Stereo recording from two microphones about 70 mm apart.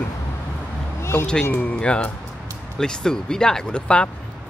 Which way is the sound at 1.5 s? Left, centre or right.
Centre.